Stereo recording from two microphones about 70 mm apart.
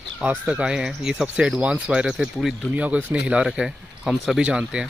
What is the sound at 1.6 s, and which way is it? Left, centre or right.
Speech, centre.